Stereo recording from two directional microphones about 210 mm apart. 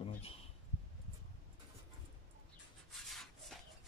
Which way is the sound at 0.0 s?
30° left (ahead or behind).